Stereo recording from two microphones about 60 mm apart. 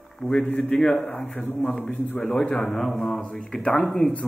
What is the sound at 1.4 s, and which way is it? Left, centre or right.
Speech, left.